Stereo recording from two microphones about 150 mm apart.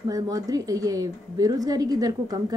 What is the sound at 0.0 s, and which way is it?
A woman's voice, 25° right (ahead or behind).